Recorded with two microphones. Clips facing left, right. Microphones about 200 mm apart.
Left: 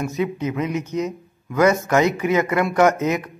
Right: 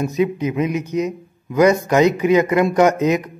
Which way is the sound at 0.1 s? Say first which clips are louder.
Right 4 dB; 15° right (ahead or behind).